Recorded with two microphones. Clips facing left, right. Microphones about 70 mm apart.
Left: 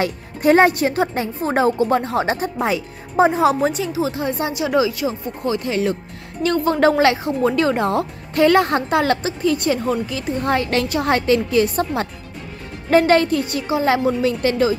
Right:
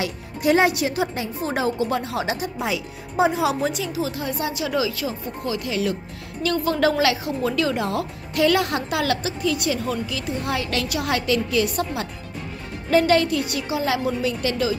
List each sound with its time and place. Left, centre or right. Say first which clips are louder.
0.0 s speech: left 5 dB; left